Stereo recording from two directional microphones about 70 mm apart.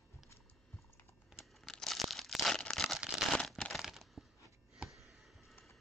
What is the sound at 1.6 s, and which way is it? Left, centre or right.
Crumpling, centre.